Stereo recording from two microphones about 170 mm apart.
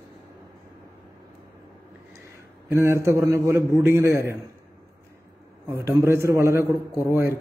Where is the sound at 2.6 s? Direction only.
15° right (ahead or behind).